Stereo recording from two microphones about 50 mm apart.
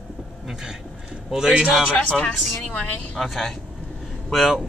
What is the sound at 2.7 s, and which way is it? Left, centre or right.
Speech, left.